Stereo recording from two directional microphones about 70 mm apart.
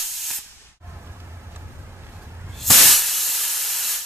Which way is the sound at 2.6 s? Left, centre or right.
Centre.